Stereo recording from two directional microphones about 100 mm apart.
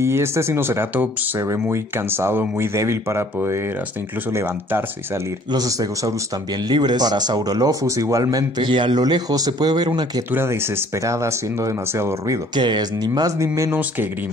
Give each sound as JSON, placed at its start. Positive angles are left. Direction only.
{"t": 0.0, "sound": "speech", "side_deg": -25}
{"t": 4.3, "sound": "speech", "side_deg": -25}
{"t": 5.5, "sound": "speech", "side_deg": -35}
{"t": 6.7, "sound": "speech", "side_deg": -45}
{"t": 8.6, "sound": "speech", "side_deg": -55}
{"t": 10.3, "sound": "speech", "side_deg": -25}
{"t": 12.5, "sound": "speech", "side_deg": -45}
{"t": 13.7, "sound": "speech", "side_deg": -20}